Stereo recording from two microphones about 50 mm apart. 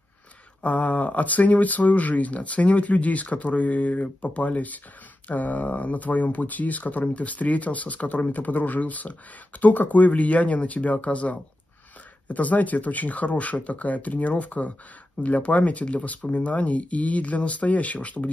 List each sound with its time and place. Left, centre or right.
0.6 s speech: left